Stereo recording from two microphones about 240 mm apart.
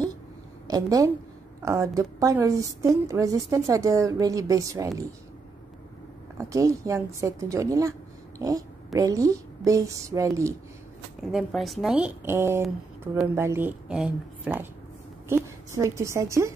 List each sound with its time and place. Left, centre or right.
0.7 s a woman's voice: centre
6.3 s a woman's voice: centre
11.3 s a woman's voice: centre